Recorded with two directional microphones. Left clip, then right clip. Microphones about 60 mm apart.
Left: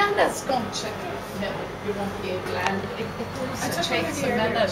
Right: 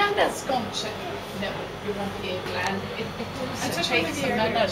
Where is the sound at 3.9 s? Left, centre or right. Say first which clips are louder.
Right 2 dB; centre.